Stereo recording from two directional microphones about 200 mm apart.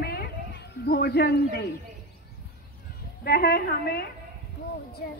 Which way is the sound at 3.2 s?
50° left (ahead or behind).